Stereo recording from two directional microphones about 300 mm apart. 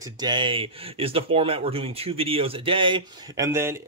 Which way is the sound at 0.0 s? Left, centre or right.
Centre.